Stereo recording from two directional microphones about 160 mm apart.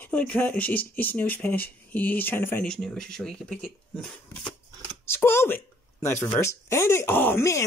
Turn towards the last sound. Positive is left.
turn(degrees=15)  # may be behind; listen again after turning